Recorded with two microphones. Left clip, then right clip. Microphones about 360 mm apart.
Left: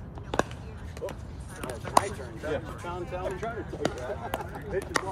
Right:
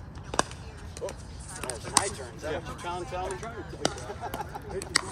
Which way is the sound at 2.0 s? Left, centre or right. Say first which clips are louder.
Even; centre.